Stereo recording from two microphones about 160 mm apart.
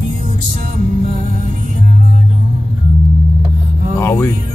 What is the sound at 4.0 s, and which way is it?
Speech, 15° left (ahead or behind).